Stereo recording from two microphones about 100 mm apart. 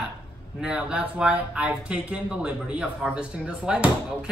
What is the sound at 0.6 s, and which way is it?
Speech, 10° right (ahead or behind).